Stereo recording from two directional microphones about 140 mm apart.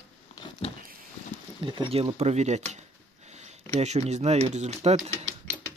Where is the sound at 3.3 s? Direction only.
55° right (ahead or behind).